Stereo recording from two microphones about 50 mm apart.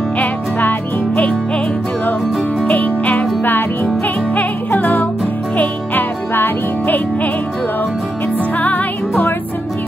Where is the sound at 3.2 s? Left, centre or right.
Centre.